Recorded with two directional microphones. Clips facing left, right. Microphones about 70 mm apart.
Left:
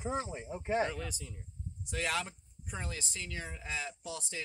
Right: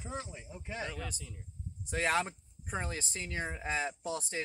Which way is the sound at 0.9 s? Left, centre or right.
Centre.